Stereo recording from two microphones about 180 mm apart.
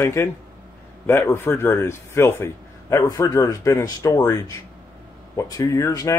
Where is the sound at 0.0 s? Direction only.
15° left (ahead or behind).